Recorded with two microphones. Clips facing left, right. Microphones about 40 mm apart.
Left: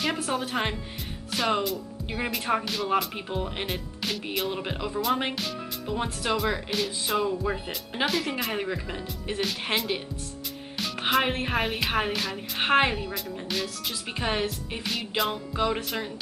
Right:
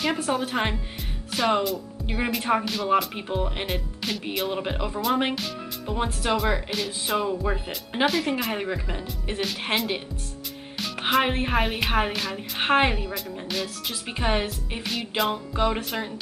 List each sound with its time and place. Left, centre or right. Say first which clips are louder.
0.0 s speech: right 3 dB; centre